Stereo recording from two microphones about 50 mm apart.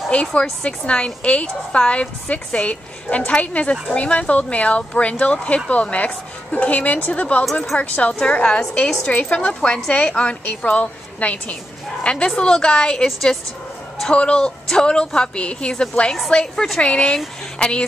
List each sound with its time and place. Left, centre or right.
0.1 s a woman's voice: left
14.1 s a woman's voice: left
14.4 s a woman's voice: centre